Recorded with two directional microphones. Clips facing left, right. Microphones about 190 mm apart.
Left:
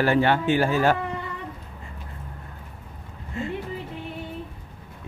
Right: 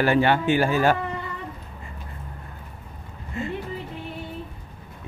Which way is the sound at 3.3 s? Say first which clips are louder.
Even; 5° right (ahead or behind).